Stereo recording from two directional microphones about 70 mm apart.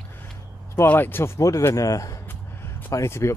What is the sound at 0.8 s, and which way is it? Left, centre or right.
Speech, left.